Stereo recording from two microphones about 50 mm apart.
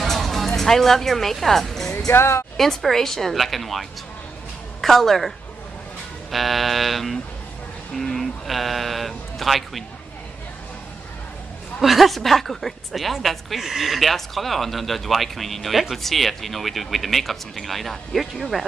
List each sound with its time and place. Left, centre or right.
0.0 s music: centre
0.5 s speech: centre
2.0 s speech: left
2.5 s a woman's voice: centre
4.8 s a woman's voice: centre
6.3 s a woman's voice: centre
11.8 s a woman's voice: centre